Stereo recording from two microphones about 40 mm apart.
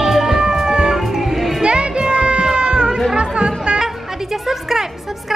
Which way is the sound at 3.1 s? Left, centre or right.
Right.